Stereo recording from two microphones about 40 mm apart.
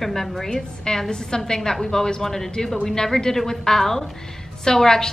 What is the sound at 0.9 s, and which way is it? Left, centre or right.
A woman's voice, centre.